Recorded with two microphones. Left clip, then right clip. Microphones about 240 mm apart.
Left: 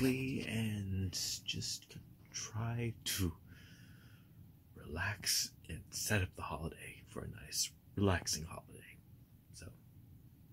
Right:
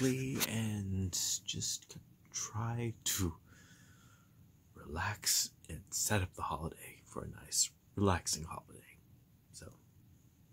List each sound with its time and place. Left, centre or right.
0.5 s speech: right
4.7 s speech: centre